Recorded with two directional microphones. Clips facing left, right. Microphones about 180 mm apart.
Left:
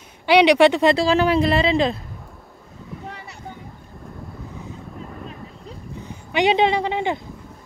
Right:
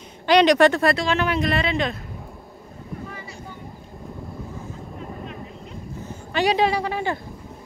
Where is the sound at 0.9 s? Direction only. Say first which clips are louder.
Left 5 dB; 30° left (ahead or behind).